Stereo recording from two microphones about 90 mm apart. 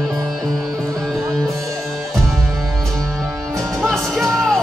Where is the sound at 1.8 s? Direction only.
Centre (ahead or behind).